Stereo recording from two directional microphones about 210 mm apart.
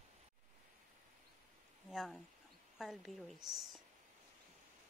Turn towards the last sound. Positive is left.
turn(degrees=0)  # may be behind; listen again after turning